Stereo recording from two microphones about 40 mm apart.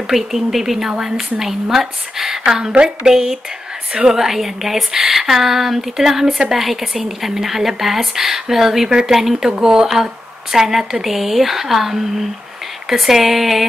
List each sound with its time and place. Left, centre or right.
0.0 s a woman's voice: centre; by 3.1 s right
3.1 s a woman's voice: centre